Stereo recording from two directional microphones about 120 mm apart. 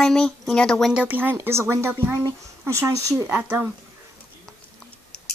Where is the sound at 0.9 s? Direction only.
10° right (ahead or behind).